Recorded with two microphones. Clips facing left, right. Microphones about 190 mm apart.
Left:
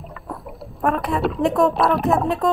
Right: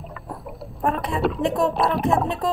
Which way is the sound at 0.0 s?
Centre (ahead or behind).